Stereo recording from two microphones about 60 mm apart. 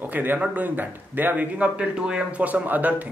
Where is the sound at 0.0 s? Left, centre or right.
Right; by 2.4 s centre.